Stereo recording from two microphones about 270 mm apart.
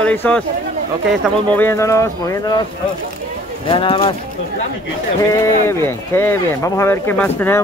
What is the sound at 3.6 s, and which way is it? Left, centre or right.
Speech, centre.